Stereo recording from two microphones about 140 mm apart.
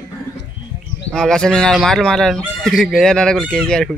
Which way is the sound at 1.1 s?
5° left (ahead or behind).